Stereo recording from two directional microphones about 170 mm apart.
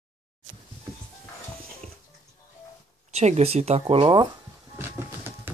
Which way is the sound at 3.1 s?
40° right (ahead or behind).